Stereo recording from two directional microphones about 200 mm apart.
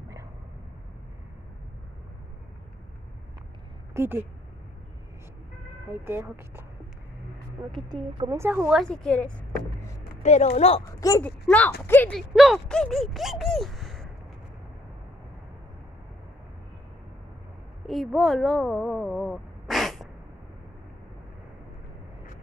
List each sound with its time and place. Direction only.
3.9 s speech: 10° right (ahead or behind)
5.9 s speech: 10° right (ahead or behind)
7.9 s speech: 20° right (ahead or behind); by 9.5 s 5° left (ahead or behind)
10.2 s speech: 35° left (ahead or behind)
11.0 s speech: 15° left (ahead or behind); by 14.1 s centre (ahead or behind)
17.8 s speech: centre (ahead or behind)